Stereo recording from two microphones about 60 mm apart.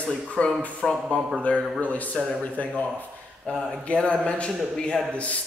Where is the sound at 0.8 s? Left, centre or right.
Centre.